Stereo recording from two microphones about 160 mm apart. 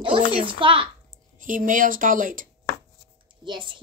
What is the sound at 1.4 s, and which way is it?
Speech, 55° right (ahead or behind).